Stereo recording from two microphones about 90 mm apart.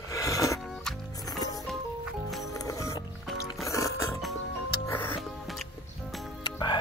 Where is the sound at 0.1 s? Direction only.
40° left (ahead or behind).